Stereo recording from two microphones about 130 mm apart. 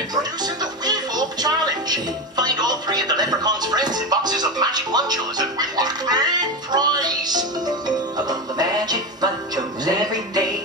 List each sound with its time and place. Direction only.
0.1 s music: 30° right (ahead or behind)